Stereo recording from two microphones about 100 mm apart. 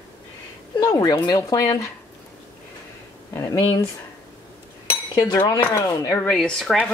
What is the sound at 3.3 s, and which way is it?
Speech, 30° left (ahead or behind).